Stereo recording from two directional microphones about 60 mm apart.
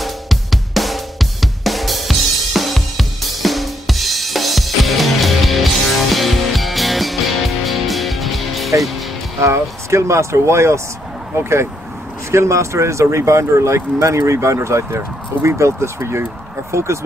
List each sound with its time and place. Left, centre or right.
0.0 s music: centre
9.4 s speech: right